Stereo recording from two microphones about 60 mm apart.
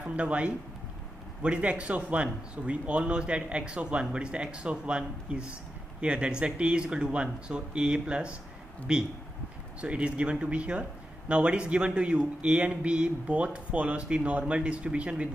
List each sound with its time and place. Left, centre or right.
0.0 s speech: right